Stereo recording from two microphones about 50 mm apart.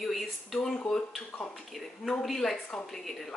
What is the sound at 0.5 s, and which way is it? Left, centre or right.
Speech, centre.